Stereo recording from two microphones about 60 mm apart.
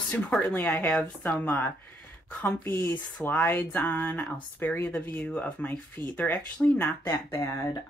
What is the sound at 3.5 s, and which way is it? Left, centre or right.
Speech, left.